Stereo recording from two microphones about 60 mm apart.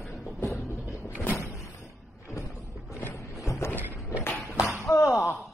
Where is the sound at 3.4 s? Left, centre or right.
Left.